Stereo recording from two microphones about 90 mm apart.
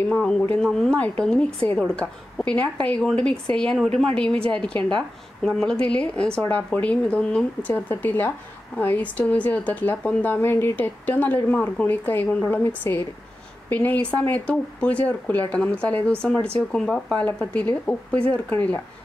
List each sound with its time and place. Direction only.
0.2 s speech: 10° left (ahead or behind)
0.9 s speech: 15° left (ahead or behind)
17.4 s speech: 15° left (ahead or behind)